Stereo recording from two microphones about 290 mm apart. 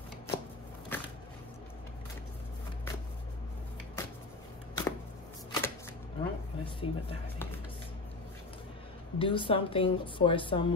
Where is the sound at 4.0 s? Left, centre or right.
Centre.